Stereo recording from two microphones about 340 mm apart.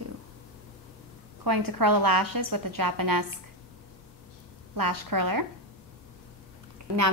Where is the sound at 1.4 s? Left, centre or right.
Right.